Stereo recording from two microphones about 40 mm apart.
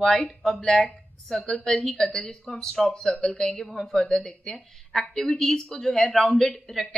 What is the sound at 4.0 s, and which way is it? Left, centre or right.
A woman's voice, centre.